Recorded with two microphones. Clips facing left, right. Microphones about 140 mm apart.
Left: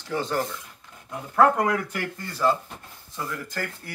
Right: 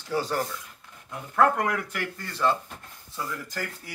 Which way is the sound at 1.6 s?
25° left (ahead or behind).